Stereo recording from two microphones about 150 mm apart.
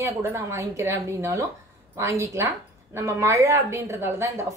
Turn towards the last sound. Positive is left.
turn(degrees=-20)  # may be behind; listen again after turning